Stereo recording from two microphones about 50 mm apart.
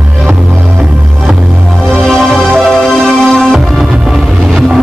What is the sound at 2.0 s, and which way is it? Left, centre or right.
Music, centre.